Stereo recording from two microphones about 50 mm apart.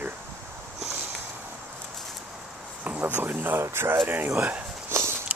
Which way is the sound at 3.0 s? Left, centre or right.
Right.